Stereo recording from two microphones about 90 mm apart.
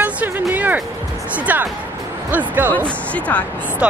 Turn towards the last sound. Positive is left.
turn(degrees=15)  # may be behind; listen again after turning